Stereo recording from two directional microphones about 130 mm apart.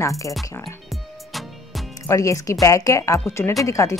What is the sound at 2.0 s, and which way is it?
A woman's voice, 25° left (ahead or behind).